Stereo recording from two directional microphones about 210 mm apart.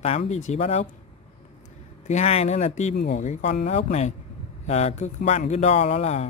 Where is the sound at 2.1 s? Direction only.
30° left (ahead or behind).